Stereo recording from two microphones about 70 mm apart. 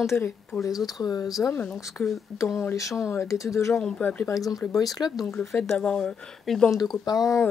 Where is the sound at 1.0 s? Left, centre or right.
Left.